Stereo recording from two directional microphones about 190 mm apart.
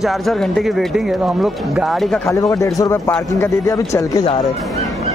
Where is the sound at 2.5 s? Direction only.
15° left (ahead or behind).